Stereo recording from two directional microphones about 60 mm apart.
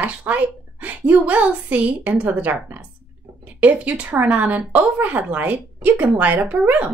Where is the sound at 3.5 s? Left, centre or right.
Right.